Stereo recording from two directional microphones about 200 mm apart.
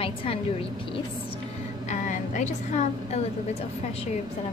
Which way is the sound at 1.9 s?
35° left (ahead or behind).